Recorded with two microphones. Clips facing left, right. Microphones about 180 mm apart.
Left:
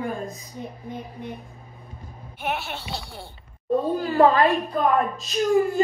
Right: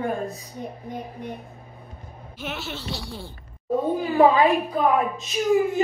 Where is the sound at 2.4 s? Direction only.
60° left (ahead or behind).